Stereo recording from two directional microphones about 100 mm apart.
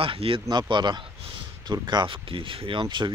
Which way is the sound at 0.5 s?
50° right (ahead or behind).